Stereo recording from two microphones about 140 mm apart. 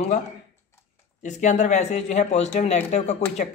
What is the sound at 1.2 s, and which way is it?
A man's voice, 60° left (ahead or behind).